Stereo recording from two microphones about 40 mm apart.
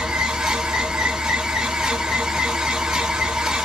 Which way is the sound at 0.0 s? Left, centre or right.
Centre.